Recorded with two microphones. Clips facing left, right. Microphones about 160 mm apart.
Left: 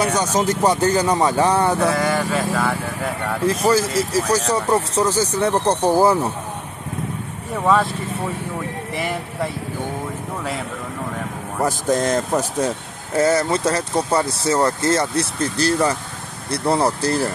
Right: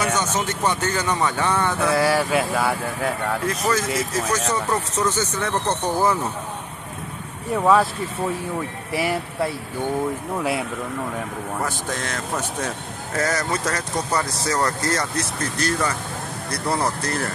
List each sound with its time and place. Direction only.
0.0 s speech: 35° left (ahead or behind)
2.0 s speech: 5° right (ahead or behind)
3.4 s speech: 30° left (ahead or behind)
7.5 s speech: centre (ahead or behind)
8.9 s speech: 5° right (ahead or behind)
11.6 s speech: 40° left (ahead or behind)